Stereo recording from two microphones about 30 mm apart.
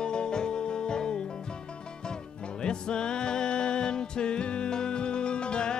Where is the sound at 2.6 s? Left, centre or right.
Left.